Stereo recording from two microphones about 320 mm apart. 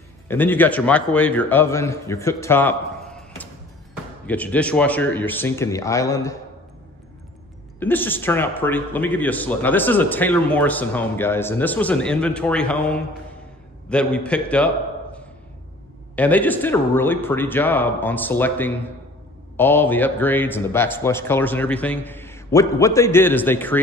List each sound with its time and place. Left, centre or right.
0.3 s a man's voice: centre
4.3 s a man's voice: centre
7.8 s a man's voice: centre
16.2 s a man's voice: centre